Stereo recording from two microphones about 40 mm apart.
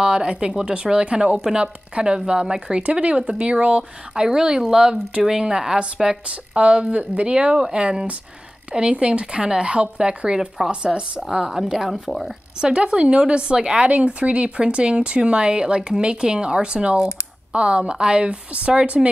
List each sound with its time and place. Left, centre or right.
0.0 s a woman's voice: right
6.2 s a woman's voice: right; by 12.0 s centre
12.1 s speech: centre
12.5 s speech: right
18.9 s a woman's voice: centre